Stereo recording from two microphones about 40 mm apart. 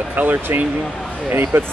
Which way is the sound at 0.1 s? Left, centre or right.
Right.